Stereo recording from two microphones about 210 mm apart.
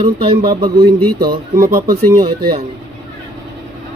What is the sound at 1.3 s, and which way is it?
Speech, 45° right (ahead or behind).